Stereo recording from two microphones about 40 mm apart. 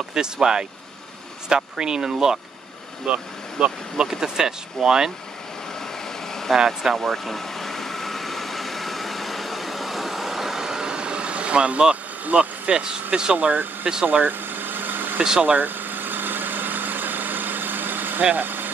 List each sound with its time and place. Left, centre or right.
0.1 s speech: centre
6.5 s speech: centre
7.0 s vehicle: centre; by 12.9 s right
13.1 s speech: right
14.1 s vehicle: right
15.4 s a sound: right
18.3 s speech: right